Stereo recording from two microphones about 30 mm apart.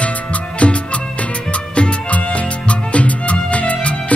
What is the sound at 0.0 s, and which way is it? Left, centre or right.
Music, left.